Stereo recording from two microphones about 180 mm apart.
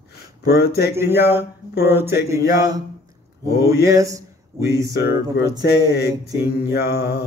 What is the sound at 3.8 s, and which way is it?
Speech, 20° right (ahead or behind).